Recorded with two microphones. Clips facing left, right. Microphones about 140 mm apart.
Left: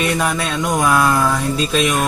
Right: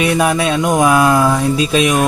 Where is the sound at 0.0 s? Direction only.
15° right (ahead or behind).